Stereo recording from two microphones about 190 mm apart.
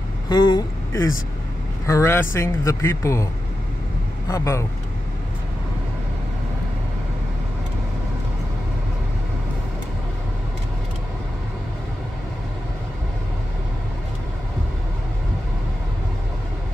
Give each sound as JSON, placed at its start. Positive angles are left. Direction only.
{"t": 0.3, "sound": "speech", "side_deg": 20}
{"t": 4.3, "sound": "speech", "side_deg": 15}